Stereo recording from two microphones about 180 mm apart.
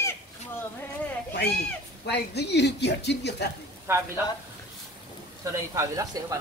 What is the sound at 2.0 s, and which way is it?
Speech, 70° left (ahead or behind).